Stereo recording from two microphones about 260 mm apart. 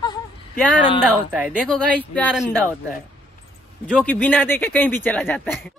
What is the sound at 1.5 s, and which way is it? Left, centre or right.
Speech, centre.